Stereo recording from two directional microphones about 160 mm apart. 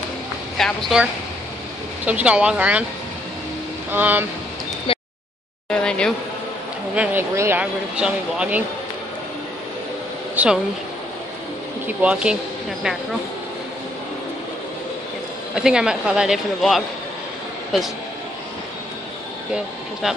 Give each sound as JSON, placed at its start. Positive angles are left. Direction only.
{"t": 0.6, "sound": "a woman's voice", "side_deg": 0}
{"t": 2.0, "sound": "speech", "side_deg": -10}
{"t": 3.9, "sound": "speech", "side_deg": -10}
{"t": 4.9, "sound": "a sound", "side_deg": 35}
{"t": 5.7, "sound": "speech", "side_deg": 5}
{"t": 7.0, "sound": "speech", "side_deg": -15}
{"t": 10.3, "sound": "speech", "side_deg": -10}
{"t": 12.0, "sound": "speech", "side_deg": -5}
{"t": 15.5, "sound": "speech", "side_deg": -5}
{"t": 19.5, "sound": "speech", "side_deg": 0}